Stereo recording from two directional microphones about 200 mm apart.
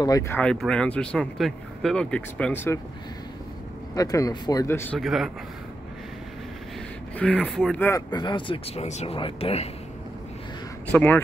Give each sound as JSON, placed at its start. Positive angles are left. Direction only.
{"t": 0.0, "sound": "speech", "side_deg": 15}
{"t": 3.9, "sound": "speech", "side_deg": 20}
{"t": 5.0, "sound": "speech", "side_deg": 0}
{"t": 7.2, "sound": "speech", "side_deg": 5}
{"t": 8.1, "sound": "speech", "side_deg": 20}
{"t": 10.9, "sound": "speech", "side_deg": 5}